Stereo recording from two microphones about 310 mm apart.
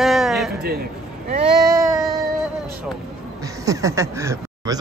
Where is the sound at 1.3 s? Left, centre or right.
Right.